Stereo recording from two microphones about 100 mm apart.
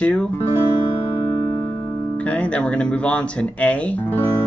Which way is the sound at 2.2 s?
10° left (ahead or behind).